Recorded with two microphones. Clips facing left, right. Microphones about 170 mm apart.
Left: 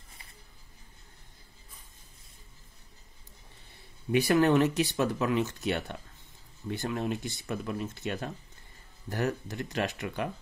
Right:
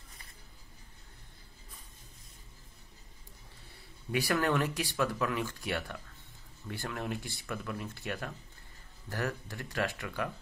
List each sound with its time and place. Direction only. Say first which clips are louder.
4.1 s speech: left 7 dB; 20° left (ahead or behind)